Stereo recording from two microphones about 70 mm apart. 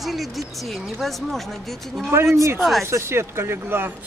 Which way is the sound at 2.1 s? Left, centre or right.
Right.